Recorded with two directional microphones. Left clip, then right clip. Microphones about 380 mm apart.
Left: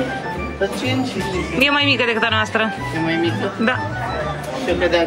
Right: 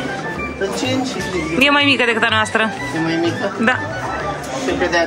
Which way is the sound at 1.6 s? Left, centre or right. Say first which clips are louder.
Right 3 dB; centre.